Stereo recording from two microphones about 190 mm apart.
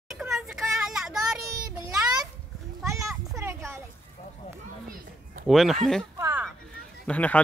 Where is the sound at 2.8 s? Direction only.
15° right (ahead or behind).